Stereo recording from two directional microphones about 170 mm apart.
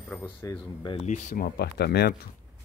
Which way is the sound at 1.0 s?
45° left (ahead or behind).